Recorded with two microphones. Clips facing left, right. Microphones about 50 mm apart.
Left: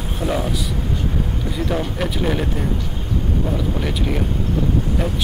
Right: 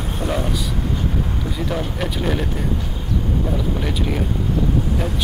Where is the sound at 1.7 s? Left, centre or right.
Centre.